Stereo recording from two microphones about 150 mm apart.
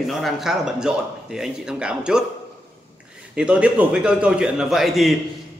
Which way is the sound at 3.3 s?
5° right (ahead or behind).